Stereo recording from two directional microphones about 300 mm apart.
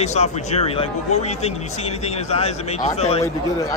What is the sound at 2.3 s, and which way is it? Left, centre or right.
Speech, left.